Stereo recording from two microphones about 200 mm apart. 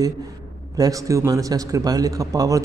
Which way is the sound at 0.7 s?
15° right (ahead or behind).